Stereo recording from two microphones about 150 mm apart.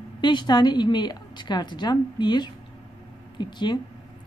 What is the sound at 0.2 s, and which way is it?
A woman's voice, 30° left (ahead or behind).